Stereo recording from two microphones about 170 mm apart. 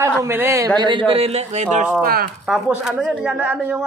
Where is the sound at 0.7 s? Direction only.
30° right (ahead or behind).